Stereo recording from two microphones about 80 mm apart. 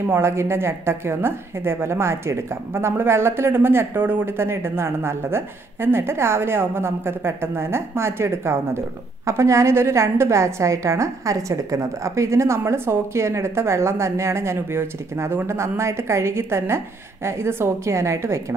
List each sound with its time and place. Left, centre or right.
0.1 s a woman's voice: right